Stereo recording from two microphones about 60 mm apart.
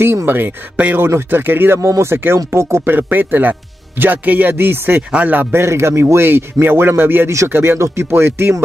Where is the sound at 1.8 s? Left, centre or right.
Right.